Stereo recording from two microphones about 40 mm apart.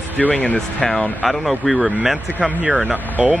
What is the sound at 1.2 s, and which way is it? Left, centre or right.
Speech, centre.